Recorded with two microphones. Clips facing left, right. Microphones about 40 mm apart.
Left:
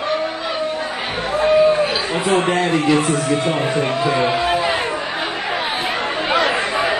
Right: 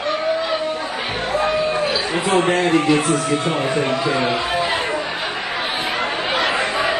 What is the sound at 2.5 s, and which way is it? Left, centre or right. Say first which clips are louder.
A man's voice: even; centre.